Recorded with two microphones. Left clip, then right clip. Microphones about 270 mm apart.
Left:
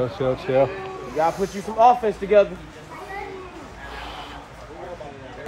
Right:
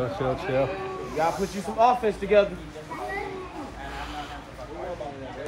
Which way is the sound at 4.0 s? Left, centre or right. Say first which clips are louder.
Left 1 dB; left.